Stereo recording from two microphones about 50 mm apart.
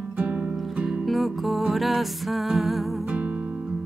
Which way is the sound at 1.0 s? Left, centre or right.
Centre.